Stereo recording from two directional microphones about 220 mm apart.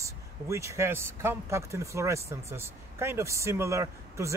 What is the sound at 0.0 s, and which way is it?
Speech, 15° right (ahead or behind).